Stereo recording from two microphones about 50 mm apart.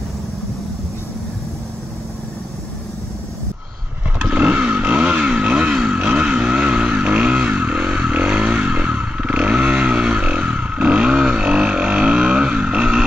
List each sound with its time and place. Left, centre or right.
4.2 s vehicle: right
5.9 s vehicle: right
6.2 s vehicle: right
6.6 s vehicle: right